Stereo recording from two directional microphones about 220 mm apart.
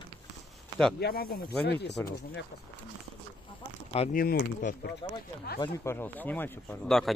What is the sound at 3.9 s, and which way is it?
Speech, 35° left (ahead or behind).